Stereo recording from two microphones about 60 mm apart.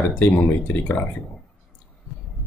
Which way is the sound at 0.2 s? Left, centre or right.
Left.